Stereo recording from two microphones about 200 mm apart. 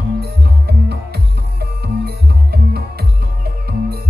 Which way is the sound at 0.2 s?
55° right (ahead or behind).